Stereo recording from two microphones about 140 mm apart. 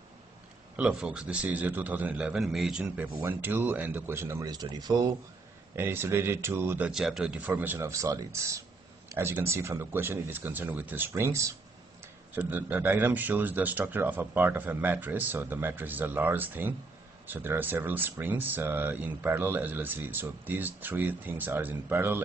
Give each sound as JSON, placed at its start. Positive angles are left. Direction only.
{"t": 0.7, "sound": "speech", "side_deg": -5}
{"t": 5.8, "sound": "speech", "side_deg": -15}
{"t": 6.9, "sound": "speech", "side_deg": -5}